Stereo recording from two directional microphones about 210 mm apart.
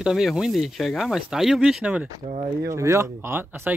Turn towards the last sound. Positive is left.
turn(degrees=-10)  # may be behind; listen again after turning